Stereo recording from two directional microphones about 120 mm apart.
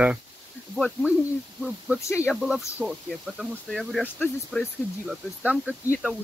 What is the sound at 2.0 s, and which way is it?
Speech, 25° left (ahead or behind).